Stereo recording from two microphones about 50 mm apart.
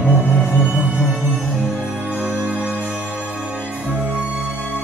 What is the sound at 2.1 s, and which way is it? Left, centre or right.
Music, centre.